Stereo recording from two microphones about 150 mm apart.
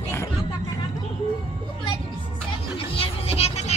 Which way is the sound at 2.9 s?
40° left (ahead or behind).